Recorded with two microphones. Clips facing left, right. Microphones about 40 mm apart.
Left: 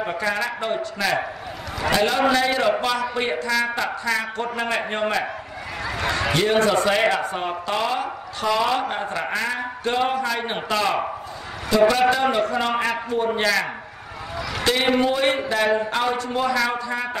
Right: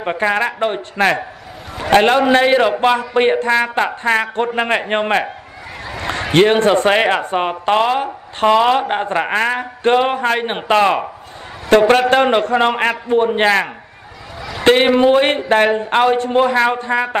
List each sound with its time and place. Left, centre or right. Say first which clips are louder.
0.0 s a man's voice: right 7 dB; right
6.3 s speech: right 8 dB; right
11.9 s a man's voice: right 7 dB; right